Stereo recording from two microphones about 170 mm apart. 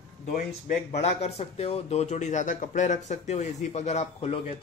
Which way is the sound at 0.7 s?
40° left (ahead or behind).